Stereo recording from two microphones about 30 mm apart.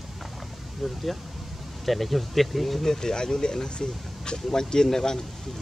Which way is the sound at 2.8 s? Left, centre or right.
Centre.